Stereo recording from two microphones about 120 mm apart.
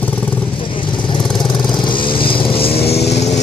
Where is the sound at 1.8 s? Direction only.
45° left (ahead or behind).